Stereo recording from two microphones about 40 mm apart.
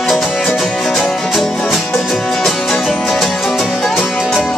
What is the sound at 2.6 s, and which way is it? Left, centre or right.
Music, centre.